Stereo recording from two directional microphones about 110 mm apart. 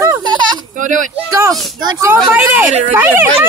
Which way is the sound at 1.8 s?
40° right (ahead or behind).